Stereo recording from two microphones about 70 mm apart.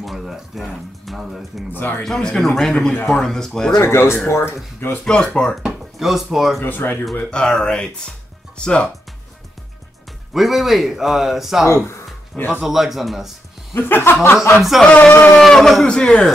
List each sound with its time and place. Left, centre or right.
0.0 s speech: centre
1.7 s speech: left
2.0 s a man's voice: centre
3.8 s speech: left
4.9 s a man's voice: centre
5.6 s speech: centre
6.6 s speech: left
7.2 s a man's voice: centre
10.3 s a man's voice: centre
13.7 s speech: left
14.5 s a man's voice: centre
14.8 s a man's voice: centre
15.4 s a man's voice: centre